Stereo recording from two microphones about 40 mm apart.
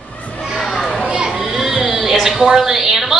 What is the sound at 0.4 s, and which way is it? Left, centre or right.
Children playing, centre.